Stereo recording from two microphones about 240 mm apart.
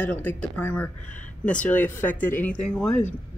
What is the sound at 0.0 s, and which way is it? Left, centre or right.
Speech, centre.